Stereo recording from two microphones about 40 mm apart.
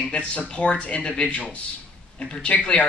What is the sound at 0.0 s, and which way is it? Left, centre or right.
Speech, left.